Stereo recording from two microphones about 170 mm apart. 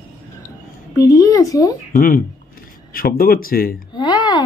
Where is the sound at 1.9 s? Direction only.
50° left (ahead or behind).